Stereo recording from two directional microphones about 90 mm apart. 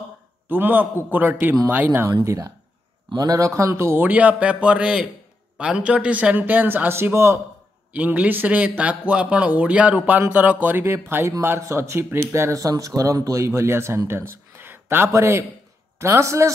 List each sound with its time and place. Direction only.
0.5 s a man's voice: 20° right (ahead or behind)
2.2 s a man's voice: 40° right (ahead or behind)
7.9 s a man's voice: 15° right (ahead or behind); by 16.5 s 35° right (ahead or behind)